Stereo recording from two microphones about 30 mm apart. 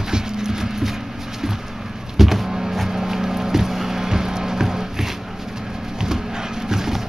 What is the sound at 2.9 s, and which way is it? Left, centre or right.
Music, centre.